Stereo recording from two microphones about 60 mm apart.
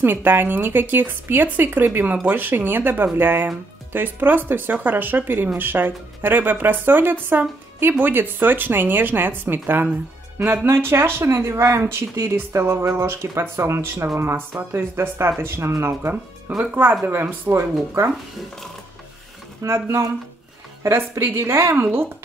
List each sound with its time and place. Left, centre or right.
0.0 s a woman's voice: right
14.7 s speech: right
16.5 s a woman's voice: right
19.6 s speech: right
21.1 s speech: right